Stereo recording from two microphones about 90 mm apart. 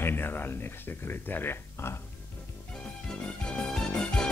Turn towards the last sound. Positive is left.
turn(degrees=10)  # may be behind; listen again after turning